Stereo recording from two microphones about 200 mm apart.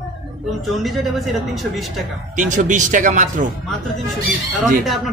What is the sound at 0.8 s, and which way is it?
A man's voice, centre (ahead or behind).